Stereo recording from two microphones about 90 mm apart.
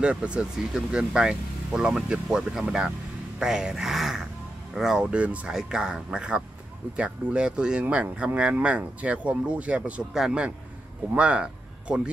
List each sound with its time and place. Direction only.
0.0 s speech: 10° right (ahead or behind)